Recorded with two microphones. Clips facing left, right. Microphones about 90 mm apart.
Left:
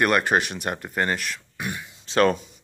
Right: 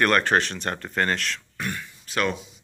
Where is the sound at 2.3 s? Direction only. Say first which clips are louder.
Left 5 dB; 45° left (ahead or behind).